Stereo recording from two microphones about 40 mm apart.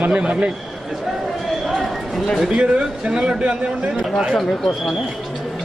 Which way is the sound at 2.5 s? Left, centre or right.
Right.